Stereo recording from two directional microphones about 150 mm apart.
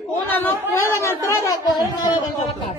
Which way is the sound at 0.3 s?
15° left (ahead or behind).